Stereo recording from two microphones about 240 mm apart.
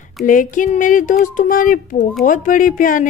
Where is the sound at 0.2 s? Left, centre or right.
Left.